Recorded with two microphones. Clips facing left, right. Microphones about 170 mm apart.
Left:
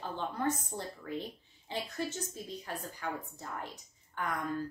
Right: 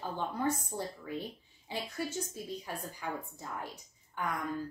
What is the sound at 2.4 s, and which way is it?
A woman's voice, 10° right (ahead or behind).